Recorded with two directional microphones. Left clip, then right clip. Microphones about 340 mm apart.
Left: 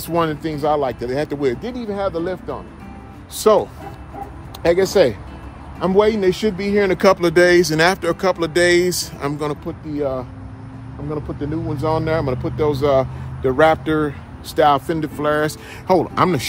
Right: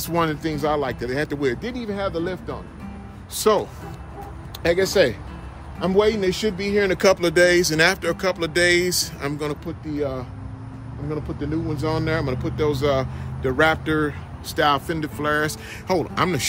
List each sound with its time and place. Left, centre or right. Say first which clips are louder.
0.0 s speech: left 3 dB; centre
4.6 s speech: left 4 dB; centre